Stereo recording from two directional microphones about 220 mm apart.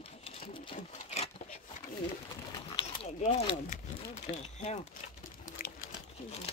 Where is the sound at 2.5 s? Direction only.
20° left (ahead or behind).